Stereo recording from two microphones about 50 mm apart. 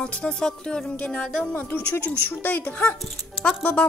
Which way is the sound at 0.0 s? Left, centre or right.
Centre.